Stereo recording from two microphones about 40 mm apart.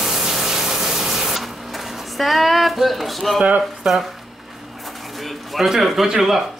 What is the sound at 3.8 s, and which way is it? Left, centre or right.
Speech, centre.